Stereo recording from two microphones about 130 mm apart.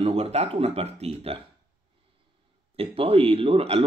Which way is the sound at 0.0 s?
50° right (ahead or behind).